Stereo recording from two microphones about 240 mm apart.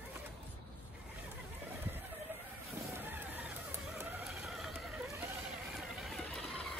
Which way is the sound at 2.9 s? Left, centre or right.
Centre.